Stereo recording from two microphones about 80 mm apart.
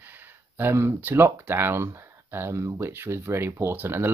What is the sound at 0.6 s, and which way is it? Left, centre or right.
Speech, right.